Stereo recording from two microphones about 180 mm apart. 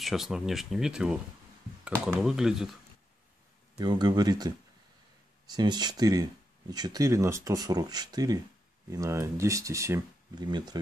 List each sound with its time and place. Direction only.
0.0 s speech: centre (ahead or behind)
3.7 s speech: 25° right (ahead or behind)